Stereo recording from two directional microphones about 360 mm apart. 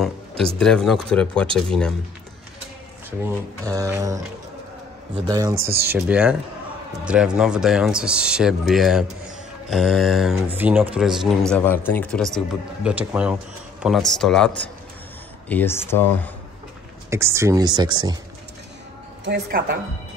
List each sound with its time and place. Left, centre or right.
0.6 s speech: centre
3.1 s speech: centre
17.1 s speech: centre
19.2 s speech: right